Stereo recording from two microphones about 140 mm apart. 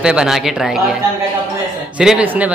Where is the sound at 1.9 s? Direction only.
10° right (ahead or behind).